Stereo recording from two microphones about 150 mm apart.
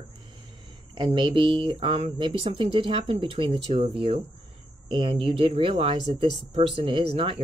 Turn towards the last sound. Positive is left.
turn(degrees=-40)  # may be behind; listen again after turning